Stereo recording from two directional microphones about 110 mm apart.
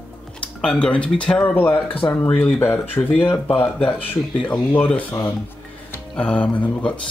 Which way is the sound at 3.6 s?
10° left (ahead or behind).